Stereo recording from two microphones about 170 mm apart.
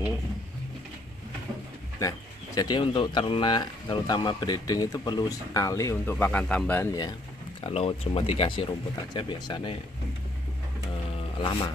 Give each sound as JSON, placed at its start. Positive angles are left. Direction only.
{"t": 2.0, "sound": "speech", "side_deg": 20}
{"t": 7.6, "sound": "speech", "side_deg": 35}
{"t": 11.3, "sound": "speech", "side_deg": 30}